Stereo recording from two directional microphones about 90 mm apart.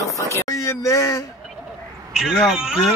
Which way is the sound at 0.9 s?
35° left (ahead or behind).